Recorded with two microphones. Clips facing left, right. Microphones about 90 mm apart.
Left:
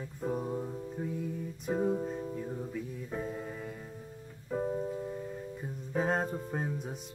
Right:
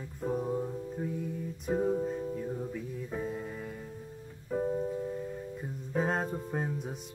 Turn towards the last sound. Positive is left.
turn(degrees=0)  # may be behind; listen again after turning